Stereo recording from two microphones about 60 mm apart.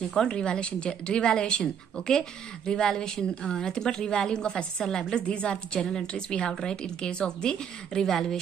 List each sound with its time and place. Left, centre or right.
0.1 s a woman's voice: centre